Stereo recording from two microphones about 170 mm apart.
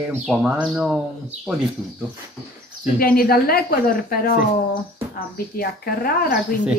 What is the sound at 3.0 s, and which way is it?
Speech, 60° left (ahead or behind).